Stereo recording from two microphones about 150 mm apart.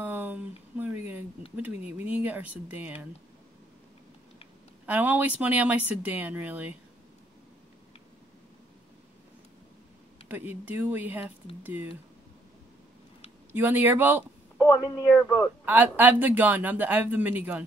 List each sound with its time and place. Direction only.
0.0 s a sound: 10° right (ahead or behind)
4.8 s speech: 10° right (ahead or behind)
10.2 s speech: 15° right (ahead or behind)
13.5 s speech: 15° right (ahead or behind)
14.6 s speech: 20° left (ahead or behind)
15.6 s speech: 10° right (ahead or behind)